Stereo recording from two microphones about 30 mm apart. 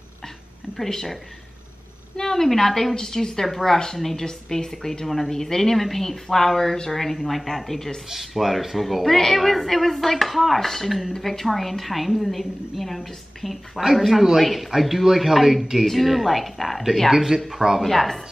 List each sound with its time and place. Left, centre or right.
2.1 s a woman's voice: centre
8.1 s a woman's voice: centre
13.7 s a woman's voice: centre
17.1 s speech: centre
17.8 s a woman's voice: centre